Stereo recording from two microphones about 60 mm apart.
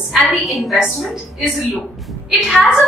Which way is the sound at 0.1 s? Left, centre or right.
Centre.